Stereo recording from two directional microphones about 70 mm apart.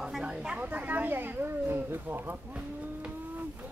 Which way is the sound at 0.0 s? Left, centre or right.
Centre.